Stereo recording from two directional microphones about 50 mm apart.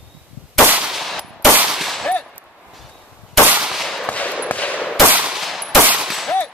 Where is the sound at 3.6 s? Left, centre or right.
Centre.